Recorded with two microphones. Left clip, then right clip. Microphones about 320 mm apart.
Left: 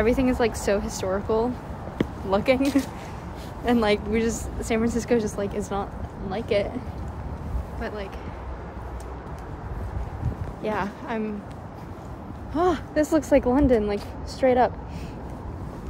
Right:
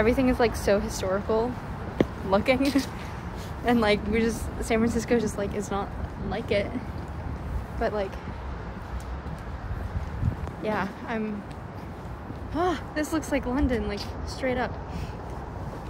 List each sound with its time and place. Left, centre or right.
0.0 s a woman's voice: centre
2.0 s a sound: centre
2.3 s a woman's voice: centre
7.8 s speech: centre
10.6 s a woman's voice: centre
12.5 s speech: centre